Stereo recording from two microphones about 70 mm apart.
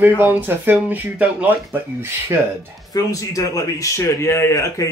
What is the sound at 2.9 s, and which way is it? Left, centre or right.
A man's voice, left.